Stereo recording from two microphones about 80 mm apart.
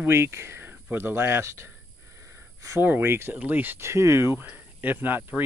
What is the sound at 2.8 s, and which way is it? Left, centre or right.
Speech, right.